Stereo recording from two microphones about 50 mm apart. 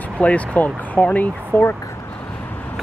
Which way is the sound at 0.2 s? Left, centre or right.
Left.